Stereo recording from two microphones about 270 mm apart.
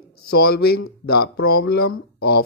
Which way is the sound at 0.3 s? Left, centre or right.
Left.